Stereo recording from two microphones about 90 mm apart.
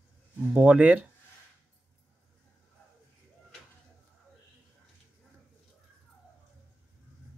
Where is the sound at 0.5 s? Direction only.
15° right (ahead or behind).